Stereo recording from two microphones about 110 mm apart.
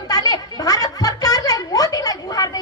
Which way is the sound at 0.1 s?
35° left (ahead or behind).